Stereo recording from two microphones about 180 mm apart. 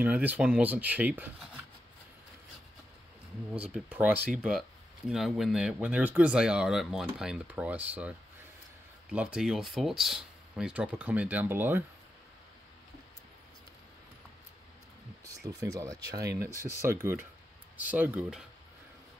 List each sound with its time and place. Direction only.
0.0 s speech: 10° right (ahead or behind)
3.5 s speech: 10° right (ahead or behind)
9.1 s speech: 5° right (ahead or behind)
15.2 s speech: 20° right (ahead or behind)